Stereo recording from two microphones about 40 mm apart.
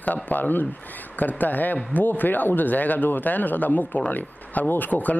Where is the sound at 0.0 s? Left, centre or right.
Left.